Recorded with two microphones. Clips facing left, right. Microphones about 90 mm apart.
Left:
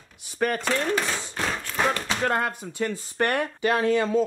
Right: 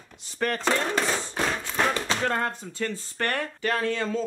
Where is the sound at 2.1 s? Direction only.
10° left (ahead or behind).